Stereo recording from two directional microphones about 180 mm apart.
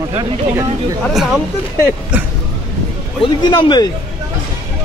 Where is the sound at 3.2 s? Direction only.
25° left (ahead or behind).